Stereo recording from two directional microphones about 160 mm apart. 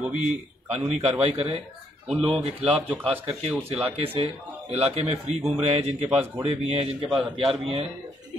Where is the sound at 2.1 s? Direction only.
5° right (ahead or behind).